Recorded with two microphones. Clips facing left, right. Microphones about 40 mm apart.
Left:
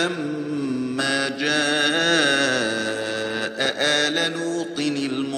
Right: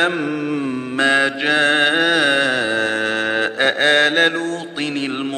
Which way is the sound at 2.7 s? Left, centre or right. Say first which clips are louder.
Right 6 dB; right.